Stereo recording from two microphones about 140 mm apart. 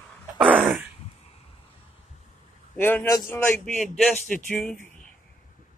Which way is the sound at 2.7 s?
15° left (ahead or behind).